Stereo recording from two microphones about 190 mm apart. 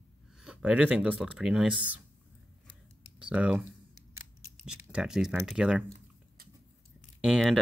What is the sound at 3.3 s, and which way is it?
Speech, 5° right (ahead or behind).